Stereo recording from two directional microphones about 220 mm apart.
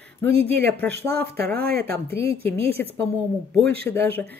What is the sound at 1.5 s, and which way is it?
Speech, 45° right (ahead or behind).